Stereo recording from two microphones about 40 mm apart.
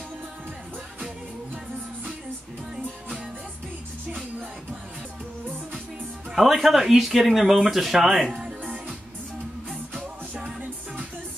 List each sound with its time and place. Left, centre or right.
6.3 s speech: centre
8.4 s music: right
9.9 s music: right